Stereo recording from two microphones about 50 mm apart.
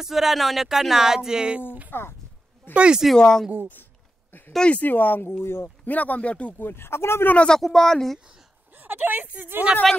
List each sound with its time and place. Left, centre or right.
0.0 s speech: centre
1.9 s speech: left
2.7 s speech: right
3.2 s speech: centre
4.6 s speech: left
5.4 s speech: left
5.9 s speech: left
6.6 s speech: left
7.3 s speech: centre
8.7 s a woman's voice: right